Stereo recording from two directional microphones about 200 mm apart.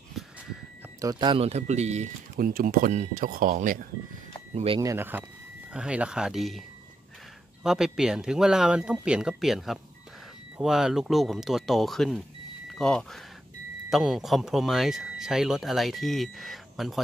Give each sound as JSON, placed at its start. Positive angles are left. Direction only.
{"t": 0.2, "sound": "a sound", "side_deg": 0}
{"t": 1.0, "sound": "speech", "side_deg": -25}
{"t": 2.3, "sound": "speech", "side_deg": -45}
{"t": 4.6, "sound": "speech", "side_deg": -25}
{"t": 7.6, "sound": "speech", "side_deg": 0}